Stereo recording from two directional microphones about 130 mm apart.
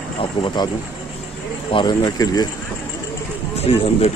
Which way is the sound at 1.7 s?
35° left (ahead or behind).